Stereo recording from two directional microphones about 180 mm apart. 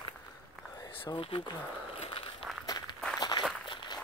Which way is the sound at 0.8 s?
25° left (ahead or behind).